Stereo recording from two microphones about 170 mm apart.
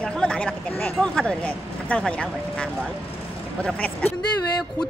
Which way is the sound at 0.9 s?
5° left (ahead or behind).